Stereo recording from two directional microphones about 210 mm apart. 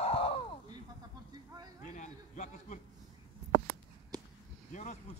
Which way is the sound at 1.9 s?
35° left (ahead or behind).